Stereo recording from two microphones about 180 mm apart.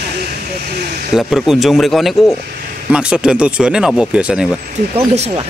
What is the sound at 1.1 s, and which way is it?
Speech, centre (ahead or behind).